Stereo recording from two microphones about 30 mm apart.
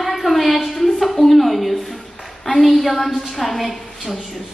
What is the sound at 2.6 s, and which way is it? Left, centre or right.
A woman's voice, centre.